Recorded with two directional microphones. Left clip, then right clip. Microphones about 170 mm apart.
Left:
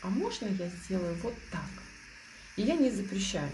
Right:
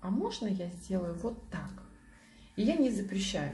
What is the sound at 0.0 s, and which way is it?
A woman's voice, 15° left (ahead or behind).